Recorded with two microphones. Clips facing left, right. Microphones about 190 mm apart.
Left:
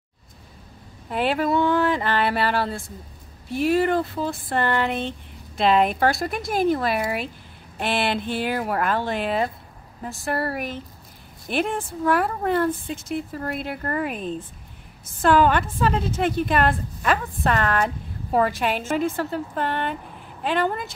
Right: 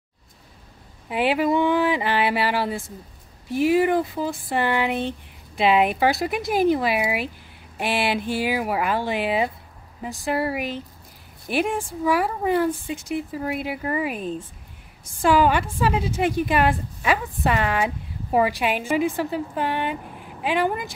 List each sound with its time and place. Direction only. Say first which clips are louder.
1.0 s a woman's voice: right 2 dB; 10° right (ahead or behind)